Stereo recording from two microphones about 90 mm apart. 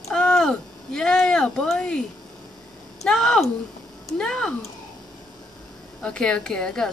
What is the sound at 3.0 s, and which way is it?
A woman's voice, 5° left (ahead or behind).